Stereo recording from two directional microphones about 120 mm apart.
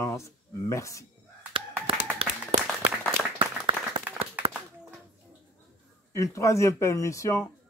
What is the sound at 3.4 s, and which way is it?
Applause, 45° right (ahead or behind).